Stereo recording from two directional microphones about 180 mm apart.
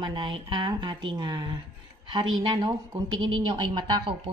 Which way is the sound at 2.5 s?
20° right (ahead or behind).